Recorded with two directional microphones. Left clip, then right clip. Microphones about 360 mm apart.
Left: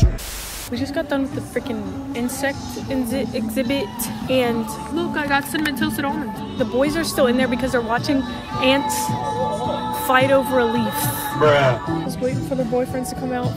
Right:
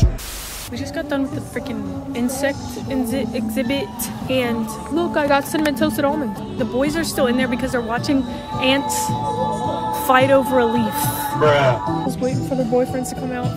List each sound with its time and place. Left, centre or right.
0.7 s speech: centre
4.9 s speech: centre
9.6 s music: right
10.0 s speech: centre